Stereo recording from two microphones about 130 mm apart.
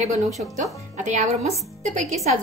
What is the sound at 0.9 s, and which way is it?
Speech, 70° right (ahead or behind).